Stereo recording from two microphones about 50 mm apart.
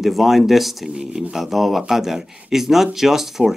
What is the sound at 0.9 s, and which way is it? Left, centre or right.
Speech, centre.